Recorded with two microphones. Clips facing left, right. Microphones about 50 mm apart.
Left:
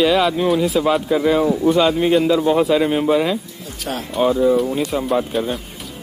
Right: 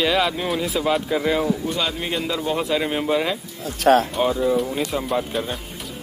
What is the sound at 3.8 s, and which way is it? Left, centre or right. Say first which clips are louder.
Speech: right 11 dB; right.